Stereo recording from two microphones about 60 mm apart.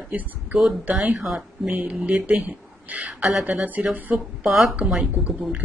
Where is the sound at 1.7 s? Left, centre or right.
Right.